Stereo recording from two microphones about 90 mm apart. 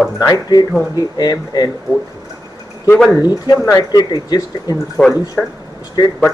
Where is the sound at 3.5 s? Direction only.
30° left (ahead or behind).